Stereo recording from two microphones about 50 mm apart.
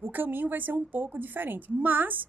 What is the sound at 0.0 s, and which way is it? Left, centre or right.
A woman's voice, right.